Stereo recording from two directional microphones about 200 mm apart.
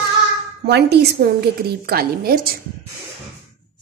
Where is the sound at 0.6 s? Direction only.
55° right (ahead or behind).